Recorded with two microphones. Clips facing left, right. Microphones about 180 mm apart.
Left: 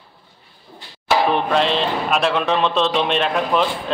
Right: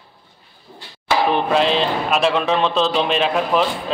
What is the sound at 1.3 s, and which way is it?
Speech, centre (ahead or behind).